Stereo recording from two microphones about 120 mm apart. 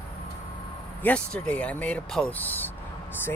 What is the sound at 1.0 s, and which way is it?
Speech, 10° left (ahead or behind).